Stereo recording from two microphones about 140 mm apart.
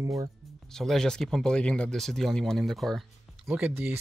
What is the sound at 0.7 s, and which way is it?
Speech, 5° left (ahead or behind).